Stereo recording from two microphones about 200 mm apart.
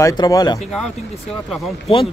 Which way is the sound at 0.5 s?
Centre (ahead or behind).